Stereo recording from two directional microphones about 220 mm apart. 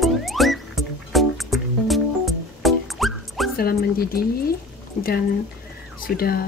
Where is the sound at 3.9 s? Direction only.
45° left (ahead or behind).